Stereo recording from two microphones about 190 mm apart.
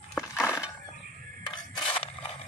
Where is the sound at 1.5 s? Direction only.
25° left (ahead or behind).